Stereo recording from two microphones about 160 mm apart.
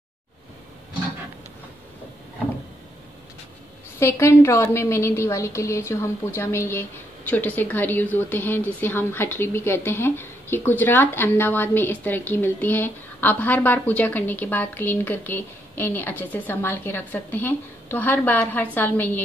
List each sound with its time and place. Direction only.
4.0 s a woman's voice: 15° left (ahead or behind)